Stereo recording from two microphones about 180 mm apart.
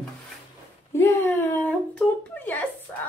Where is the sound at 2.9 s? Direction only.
10° left (ahead or behind).